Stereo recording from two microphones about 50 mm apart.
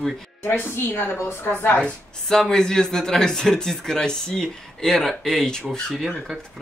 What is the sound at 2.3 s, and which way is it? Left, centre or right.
Speech, centre.